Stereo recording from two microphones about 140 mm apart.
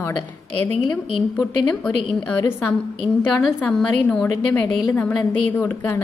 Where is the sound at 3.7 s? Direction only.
5° left (ahead or behind).